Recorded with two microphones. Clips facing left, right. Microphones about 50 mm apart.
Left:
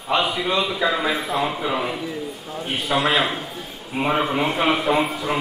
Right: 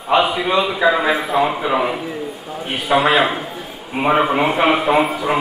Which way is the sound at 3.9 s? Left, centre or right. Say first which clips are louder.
Right 5 dB; centre.